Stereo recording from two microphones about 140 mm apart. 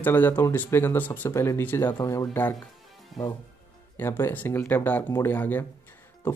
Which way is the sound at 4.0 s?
15° left (ahead or behind).